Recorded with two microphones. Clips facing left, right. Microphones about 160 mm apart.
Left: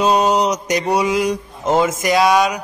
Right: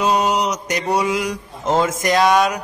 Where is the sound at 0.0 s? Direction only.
25° left (ahead or behind).